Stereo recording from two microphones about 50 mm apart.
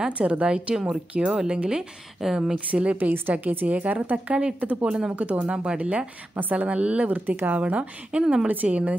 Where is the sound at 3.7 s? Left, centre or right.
Right.